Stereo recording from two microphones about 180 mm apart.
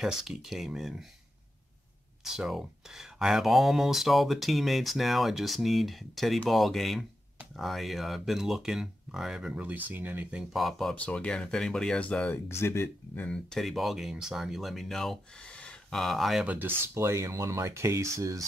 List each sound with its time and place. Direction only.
0.0 s speech: centre (ahead or behind)
2.2 s speech: centre (ahead or behind); by 18.4 s 15° right (ahead or behind)